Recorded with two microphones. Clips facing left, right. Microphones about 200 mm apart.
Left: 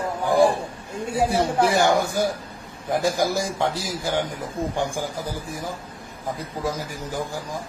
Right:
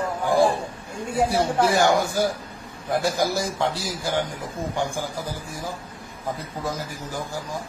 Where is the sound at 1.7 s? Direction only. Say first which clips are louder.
Even; 15° left (ahead or behind).